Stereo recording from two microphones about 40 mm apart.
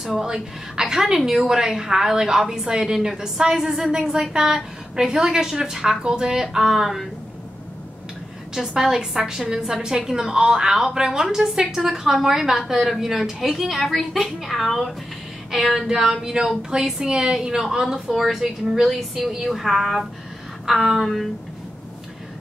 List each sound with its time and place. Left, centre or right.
0.0 s a woman's voice: centre
8.7 s a woman's voice: centre
17.9 s a woman's voice: centre